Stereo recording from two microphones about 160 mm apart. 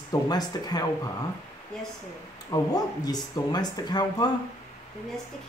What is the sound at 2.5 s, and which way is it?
Speech, 25° left (ahead or behind).